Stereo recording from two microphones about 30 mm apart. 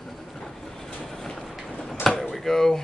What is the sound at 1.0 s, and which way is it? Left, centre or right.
Vehicle, centre.